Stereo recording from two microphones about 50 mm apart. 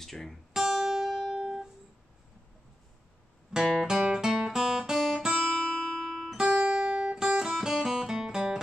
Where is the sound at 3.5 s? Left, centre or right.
Centre.